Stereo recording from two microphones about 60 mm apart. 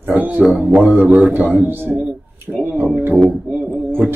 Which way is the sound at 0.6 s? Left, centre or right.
Right.